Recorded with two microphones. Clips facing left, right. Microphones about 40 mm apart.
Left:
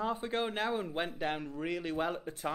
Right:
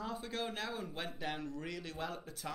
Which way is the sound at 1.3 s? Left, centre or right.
Centre.